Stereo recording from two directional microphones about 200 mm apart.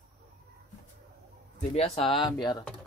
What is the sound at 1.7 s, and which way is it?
Speech, 30° left (ahead or behind).